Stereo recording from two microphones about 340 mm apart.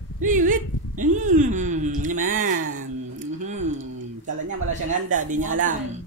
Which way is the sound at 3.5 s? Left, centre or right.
Right.